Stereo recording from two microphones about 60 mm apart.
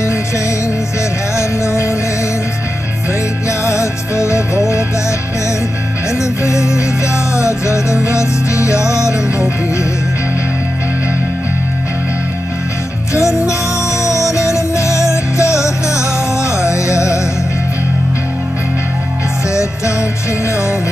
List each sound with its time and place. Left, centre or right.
3.4 s music: left
6.4 s music: left
13.2 s music: centre
13.5 s music: left